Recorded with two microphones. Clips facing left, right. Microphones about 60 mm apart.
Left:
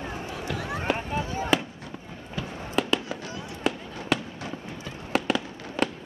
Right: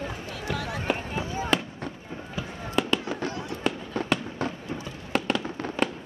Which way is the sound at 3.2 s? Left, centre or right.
Right.